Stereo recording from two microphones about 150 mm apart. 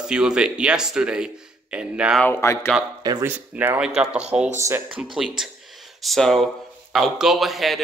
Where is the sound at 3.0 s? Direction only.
25° right (ahead or behind).